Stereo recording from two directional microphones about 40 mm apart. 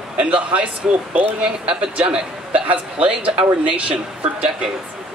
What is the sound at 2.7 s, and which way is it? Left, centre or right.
A woman's voice, right.